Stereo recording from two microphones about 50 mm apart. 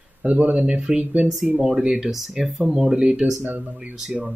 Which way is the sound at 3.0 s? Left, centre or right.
Right.